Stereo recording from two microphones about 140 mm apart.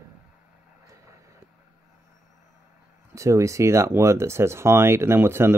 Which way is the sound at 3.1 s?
20° right (ahead or behind).